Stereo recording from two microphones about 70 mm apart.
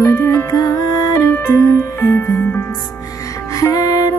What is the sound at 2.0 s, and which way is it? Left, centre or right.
Music, left.